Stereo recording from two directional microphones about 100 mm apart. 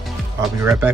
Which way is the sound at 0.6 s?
25° right (ahead or behind).